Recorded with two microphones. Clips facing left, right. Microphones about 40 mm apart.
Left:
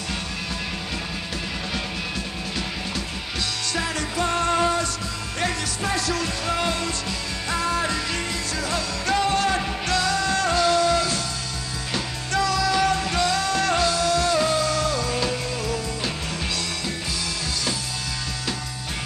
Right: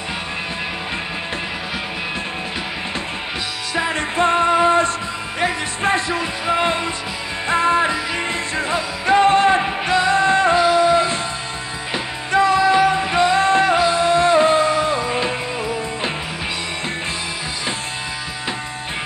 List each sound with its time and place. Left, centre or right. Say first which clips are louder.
3.7 s music: right 8 dB; right
5.8 s music: right 7 dB; right